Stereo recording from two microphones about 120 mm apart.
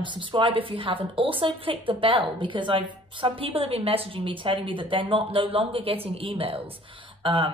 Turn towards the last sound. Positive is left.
turn(degrees=-45)  # may be behind; listen again after turning